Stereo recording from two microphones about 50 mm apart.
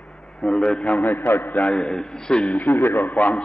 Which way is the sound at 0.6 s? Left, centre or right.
Centre.